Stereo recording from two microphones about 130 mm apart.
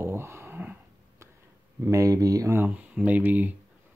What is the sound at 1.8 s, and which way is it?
Speech, 25° right (ahead or behind).